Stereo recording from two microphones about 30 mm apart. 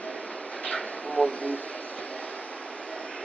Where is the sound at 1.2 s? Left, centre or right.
Left.